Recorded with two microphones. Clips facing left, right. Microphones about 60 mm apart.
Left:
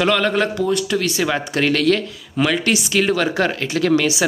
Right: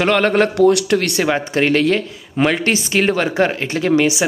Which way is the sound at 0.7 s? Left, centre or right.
Right.